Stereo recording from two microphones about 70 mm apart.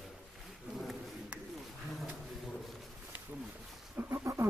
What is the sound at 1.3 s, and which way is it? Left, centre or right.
Roaring cats, centre.